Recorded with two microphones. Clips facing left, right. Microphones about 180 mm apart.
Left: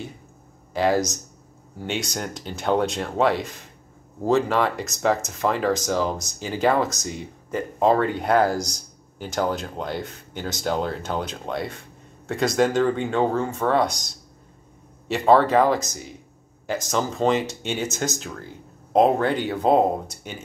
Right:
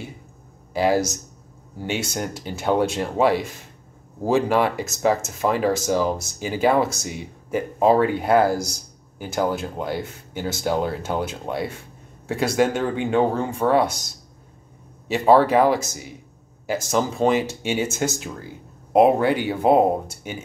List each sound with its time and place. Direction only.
0.7 s speech: 10° right (ahead or behind)
15.0 s speech: 5° right (ahead or behind)